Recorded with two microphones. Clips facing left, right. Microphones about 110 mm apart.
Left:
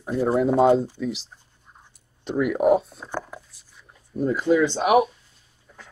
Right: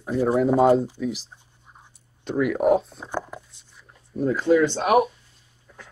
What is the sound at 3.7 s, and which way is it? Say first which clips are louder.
Writing: even; centre (ahead or behind).